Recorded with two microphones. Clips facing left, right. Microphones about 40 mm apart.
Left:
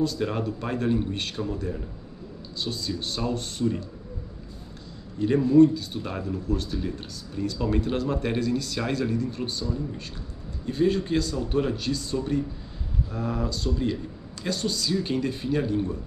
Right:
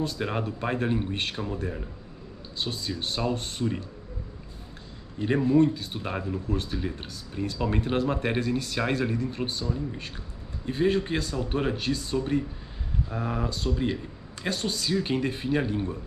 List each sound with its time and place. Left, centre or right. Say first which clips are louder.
0.0 s speech: left 3 dB; right
5.2 s speech: left 4 dB; right